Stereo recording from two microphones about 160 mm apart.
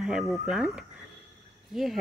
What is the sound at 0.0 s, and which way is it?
Speech, 5° right (ahead or behind).